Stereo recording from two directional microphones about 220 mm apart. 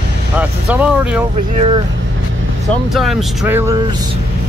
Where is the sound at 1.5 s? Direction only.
25° right (ahead or behind).